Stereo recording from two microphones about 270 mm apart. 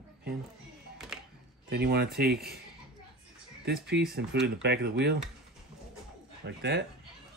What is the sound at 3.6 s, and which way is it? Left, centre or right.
Speech, right.